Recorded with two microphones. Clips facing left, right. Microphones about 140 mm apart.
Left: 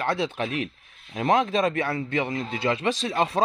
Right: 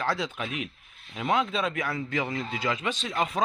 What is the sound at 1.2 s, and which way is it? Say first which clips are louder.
A man's voice: left 5 dB; 40° left (ahead or behind).